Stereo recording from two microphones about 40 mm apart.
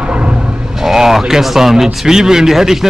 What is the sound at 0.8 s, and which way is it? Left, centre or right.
Speech, centre.